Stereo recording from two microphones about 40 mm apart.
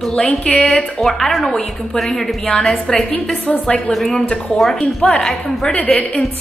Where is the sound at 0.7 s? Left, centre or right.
Centre.